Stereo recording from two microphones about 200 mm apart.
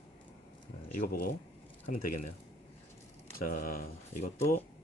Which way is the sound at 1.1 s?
50° left (ahead or behind).